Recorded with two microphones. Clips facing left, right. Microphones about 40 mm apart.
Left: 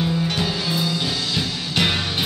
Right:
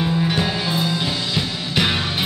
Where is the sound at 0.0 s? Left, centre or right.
Centre.